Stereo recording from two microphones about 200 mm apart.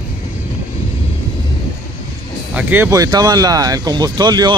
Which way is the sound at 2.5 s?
10° right (ahead or behind).